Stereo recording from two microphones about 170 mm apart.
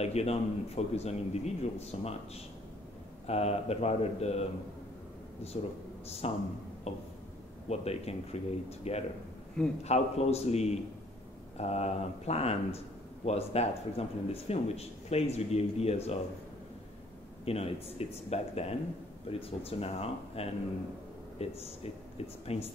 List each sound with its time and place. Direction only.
0.0 s speech: 40° left (ahead or behind)
6.2 s speech: 40° left (ahead or behind)
17.5 s speech: 35° left (ahead or behind)